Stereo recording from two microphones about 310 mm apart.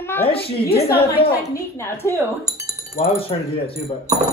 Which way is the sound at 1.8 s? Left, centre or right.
Centre.